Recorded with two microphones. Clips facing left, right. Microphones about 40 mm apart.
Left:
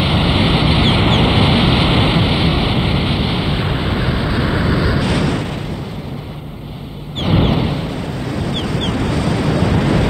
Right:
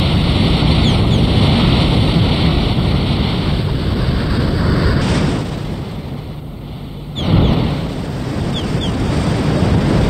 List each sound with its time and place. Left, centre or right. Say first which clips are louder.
0.0 s waves: left 1 dB; left
0.9 s vehicle: left 2 dB; left
1.3 s vehicle: left 1 dB; centre
1.9 s waves: left 1 dB; left
2.2 s waves: even; centre
2.7 s waves: even; left
3.6 s vehicle: left 1 dB; left
4.7 s vehicle: even; centre
7.2 s a sound: even; left
8.4 s ocean: even; centre
8.8 s waves: left 1 dB; left
9.1 s waves: right 1 dB; centre
9.7 s vehicle: even; left